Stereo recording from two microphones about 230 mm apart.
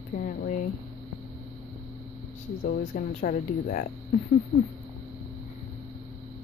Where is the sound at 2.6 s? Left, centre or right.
Left.